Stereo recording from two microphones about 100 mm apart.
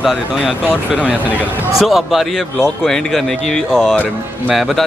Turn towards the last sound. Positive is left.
turn(degrees=5)  # may be behind; listen again after turning